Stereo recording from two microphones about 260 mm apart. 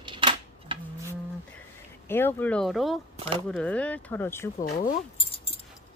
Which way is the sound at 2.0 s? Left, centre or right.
Centre.